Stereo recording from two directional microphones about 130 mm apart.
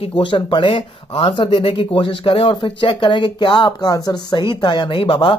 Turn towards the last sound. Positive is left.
turn(degrees=40)  # may be behind; listen again after turning